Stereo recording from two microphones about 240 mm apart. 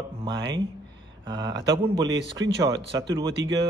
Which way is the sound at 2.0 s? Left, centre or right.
Right.